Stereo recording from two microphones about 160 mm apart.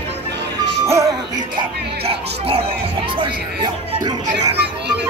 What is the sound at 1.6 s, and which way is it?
Music, 40° right (ahead or behind).